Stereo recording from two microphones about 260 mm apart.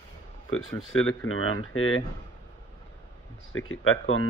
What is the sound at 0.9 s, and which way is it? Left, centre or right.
Speech, left.